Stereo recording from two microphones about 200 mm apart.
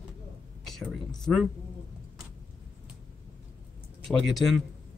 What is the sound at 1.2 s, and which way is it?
Speech, centre (ahead or behind).